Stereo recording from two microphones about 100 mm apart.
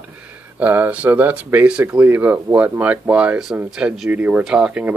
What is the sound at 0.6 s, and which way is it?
Speech, 15° right (ahead or behind).